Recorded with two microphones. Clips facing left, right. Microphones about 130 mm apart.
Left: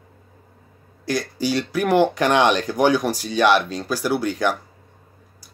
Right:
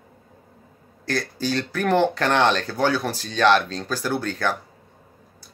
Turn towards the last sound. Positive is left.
turn(degrees=15)  # may be behind; listen again after turning